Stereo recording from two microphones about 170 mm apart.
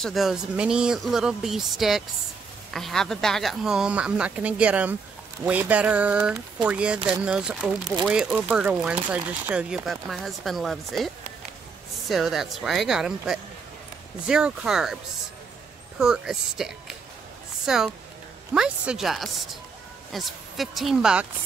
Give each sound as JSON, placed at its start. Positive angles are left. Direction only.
{"t": 0.0, "sound": "speech", "side_deg": 0}
{"t": 12.1, "sound": "speech", "side_deg": 0}
{"t": 16.0, "sound": "speech", "side_deg": 0}